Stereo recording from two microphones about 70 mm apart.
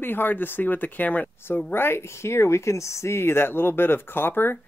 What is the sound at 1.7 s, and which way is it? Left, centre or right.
Speech, left.